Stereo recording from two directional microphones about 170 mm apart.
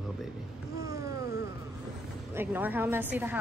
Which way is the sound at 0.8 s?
20° right (ahead or behind).